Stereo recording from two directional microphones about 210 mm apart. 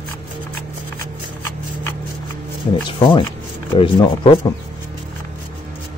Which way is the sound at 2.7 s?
25° left (ahead or behind).